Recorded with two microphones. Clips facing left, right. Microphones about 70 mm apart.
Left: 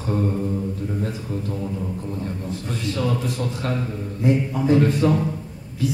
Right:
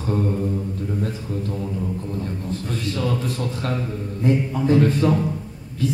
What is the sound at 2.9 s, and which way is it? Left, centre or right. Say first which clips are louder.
A man's voice: left 1 dB; centre.